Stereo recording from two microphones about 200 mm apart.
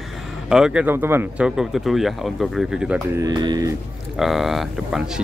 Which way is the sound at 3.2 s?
20° right (ahead or behind).